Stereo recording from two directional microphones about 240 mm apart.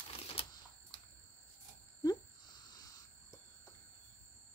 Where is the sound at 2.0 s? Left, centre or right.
Centre.